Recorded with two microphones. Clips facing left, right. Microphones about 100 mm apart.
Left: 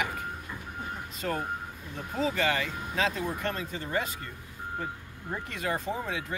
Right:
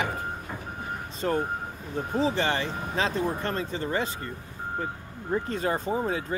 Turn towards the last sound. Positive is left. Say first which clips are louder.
# right 5 dB
turn(degrees=-35)  # may be behind; listen again after turning